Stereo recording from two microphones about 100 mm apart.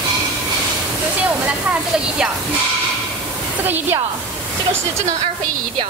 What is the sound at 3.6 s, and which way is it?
Speech, 20° right (ahead or behind).